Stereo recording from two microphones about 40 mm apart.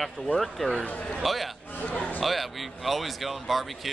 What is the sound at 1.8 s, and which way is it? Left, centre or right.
Speech, left.